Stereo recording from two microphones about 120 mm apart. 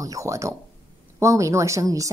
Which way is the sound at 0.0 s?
25° right (ahead or behind).